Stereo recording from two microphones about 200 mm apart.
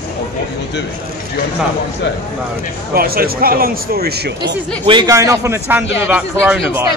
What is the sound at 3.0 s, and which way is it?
Speech, 50° right (ahead or behind).